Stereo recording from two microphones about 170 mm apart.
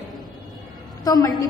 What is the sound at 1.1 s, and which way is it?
Speech, 20° left (ahead or behind).